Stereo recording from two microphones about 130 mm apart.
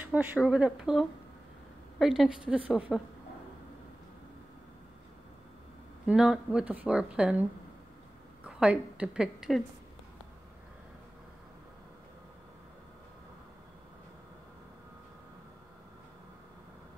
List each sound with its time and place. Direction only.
0.0 s a woman's voice: 10° right (ahead or behind)
6.0 s a woman's voice: 5° right (ahead or behind)
8.5 s a woman's voice: 10° right (ahead or behind)